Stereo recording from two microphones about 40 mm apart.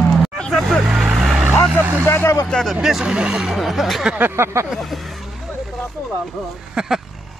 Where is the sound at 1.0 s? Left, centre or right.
Centre.